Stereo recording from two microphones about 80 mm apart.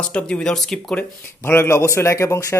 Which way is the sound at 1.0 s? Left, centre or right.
Left.